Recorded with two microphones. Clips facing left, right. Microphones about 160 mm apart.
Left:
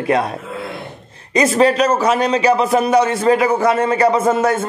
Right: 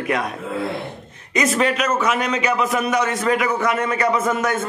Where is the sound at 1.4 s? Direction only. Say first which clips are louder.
Left 6 dB; 35° left (ahead or behind).